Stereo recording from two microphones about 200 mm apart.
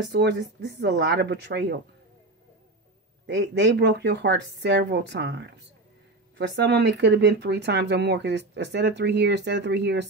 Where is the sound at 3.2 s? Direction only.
60° right (ahead or behind).